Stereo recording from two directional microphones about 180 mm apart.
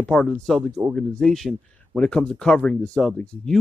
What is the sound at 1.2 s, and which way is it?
Speech, centre (ahead or behind).